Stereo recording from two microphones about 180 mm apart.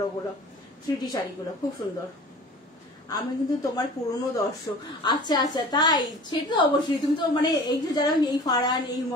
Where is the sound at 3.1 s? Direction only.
20° left (ahead or behind).